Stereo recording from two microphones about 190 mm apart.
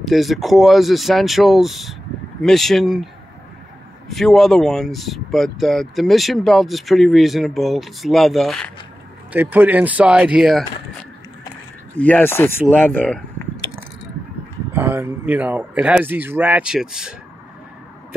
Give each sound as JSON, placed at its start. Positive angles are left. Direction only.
{"t": 0.0, "sound": "speech", "side_deg": 0}
{"t": 4.1, "sound": "speech", "side_deg": 0}
{"t": 9.3, "sound": "speech", "side_deg": -10}
{"t": 12.0, "sound": "speech", "side_deg": 10}
{"t": 14.7, "sound": "speech", "side_deg": -10}